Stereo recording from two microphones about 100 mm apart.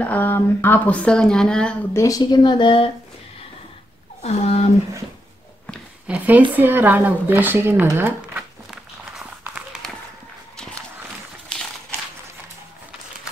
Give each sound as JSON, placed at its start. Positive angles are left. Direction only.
{"t": 0.0, "sound": "speech", "side_deg": 15}
{"t": 2.0, "sound": "speech", "side_deg": 35}
{"t": 4.2, "sound": "speech", "side_deg": 90}
{"t": 6.0, "sound": "speech", "side_deg": -15}
{"t": 9.2, "sound": "run", "side_deg": -10}